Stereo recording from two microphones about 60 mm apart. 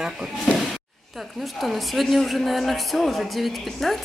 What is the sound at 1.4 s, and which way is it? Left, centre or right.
A woman's voice, centre.